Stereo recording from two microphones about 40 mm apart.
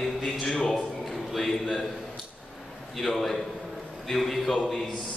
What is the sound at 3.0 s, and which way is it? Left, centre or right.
A man's voice, centre.